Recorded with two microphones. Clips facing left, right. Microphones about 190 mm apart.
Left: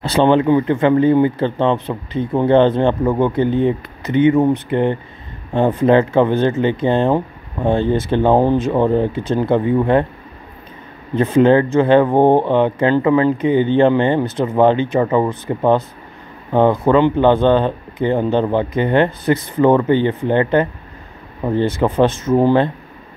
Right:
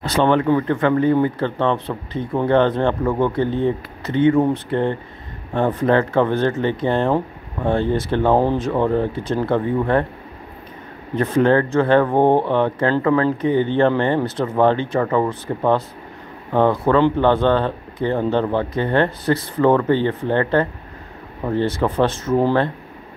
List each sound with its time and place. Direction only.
0.0 s speech: 25° left (ahead or behind)
11.1 s speech: 25° left (ahead or behind)